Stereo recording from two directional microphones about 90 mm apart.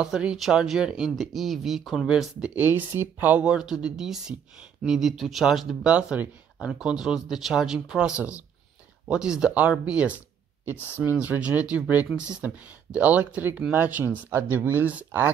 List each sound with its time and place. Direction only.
0.0 s speech: 10° right (ahead or behind)
2.5 s speech: 20° right (ahead or behind)